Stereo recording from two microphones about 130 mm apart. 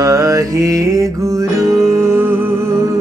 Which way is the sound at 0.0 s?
25° right (ahead or behind).